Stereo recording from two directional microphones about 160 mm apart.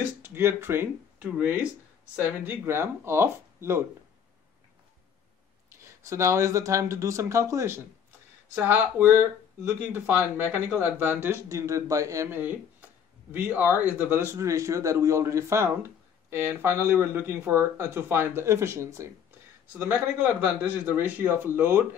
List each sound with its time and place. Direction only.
0.2 s speech: 15° right (ahead or behind)
5.8 s speech: 20° right (ahead or behind)